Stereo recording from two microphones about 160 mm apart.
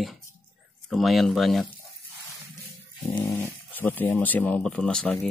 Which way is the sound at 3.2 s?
15° left (ahead or behind).